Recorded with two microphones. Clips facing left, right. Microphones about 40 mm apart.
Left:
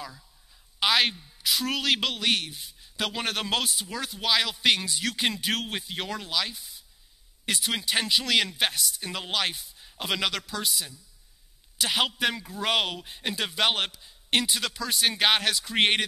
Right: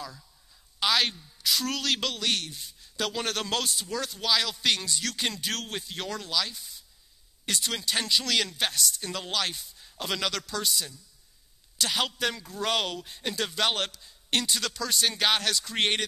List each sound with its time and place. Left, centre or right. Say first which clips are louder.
0.7 s a woman's voice: left 2 dB; centre